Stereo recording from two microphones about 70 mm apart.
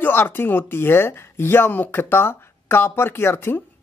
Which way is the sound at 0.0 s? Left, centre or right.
Left.